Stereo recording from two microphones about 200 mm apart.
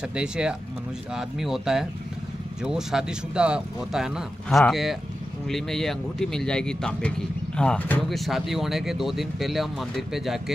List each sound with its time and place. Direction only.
0.1 s speech: 5° right (ahead or behind)